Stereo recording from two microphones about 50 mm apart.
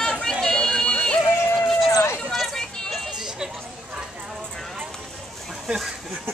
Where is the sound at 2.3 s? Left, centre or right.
Centre.